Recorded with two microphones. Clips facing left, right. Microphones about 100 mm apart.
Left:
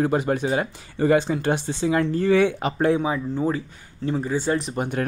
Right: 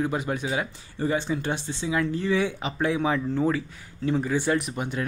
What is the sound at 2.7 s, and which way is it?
Speech, 35° left (ahead or behind).